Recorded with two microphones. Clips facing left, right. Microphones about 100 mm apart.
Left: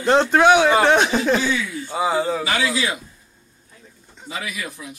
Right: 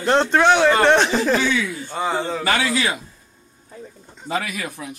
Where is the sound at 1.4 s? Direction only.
55° right (ahead or behind).